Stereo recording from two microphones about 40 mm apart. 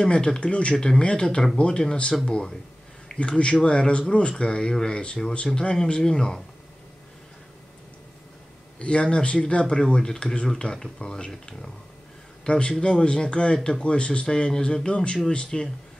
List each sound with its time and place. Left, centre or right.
0.0 s speech: left
0.7 s speech: centre
8.7 s a man's voice: left